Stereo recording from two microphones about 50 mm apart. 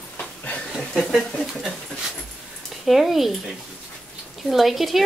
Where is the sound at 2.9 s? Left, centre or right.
Centre.